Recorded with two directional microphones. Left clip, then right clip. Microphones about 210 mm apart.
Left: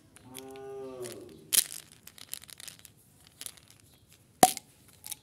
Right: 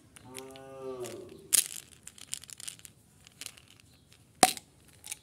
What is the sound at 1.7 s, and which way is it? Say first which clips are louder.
Crushing: even; 15° left (ahead or behind).